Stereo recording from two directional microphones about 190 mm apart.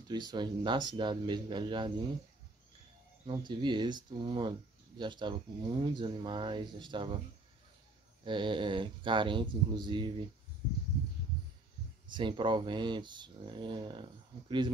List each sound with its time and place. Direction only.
0.1 s speech: 20° right (ahead or behind)
3.3 s speech: 25° right (ahead or behind)
8.2 s speech: 25° right (ahead or behind)
12.1 s speech: 25° right (ahead or behind)